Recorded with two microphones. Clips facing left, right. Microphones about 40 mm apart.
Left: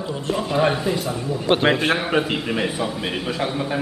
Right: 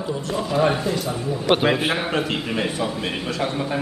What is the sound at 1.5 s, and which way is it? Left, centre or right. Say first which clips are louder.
Speech: even; centre.